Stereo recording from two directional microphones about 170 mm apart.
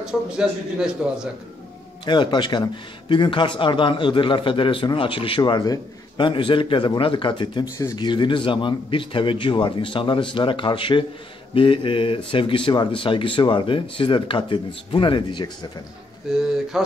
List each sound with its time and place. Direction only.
0.0 s a man's voice: 5° right (ahead or behind)
2.0 s a man's voice: 25° left (ahead or behind)
16.7 s a sound: centre (ahead or behind)